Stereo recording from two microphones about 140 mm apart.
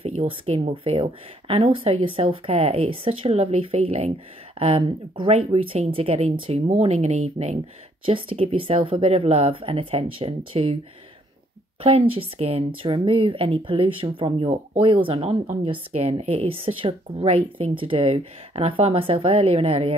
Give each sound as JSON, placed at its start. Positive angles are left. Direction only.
{"t": 0.0, "sound": "speech", "side_deg": -45}
{"t": 8.0, "sound": "speech", "side_deg": -40}
{"t": 11.8, "sound": "speech", "side_deg": -40}